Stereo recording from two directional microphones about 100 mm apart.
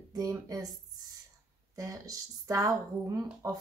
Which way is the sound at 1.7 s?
35° right (ahead or behind).